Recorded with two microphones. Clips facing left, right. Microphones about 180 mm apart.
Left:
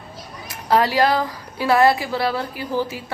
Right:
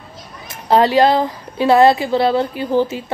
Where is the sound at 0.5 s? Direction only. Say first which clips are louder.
Right 5 dB; 25° right (ahead or behind).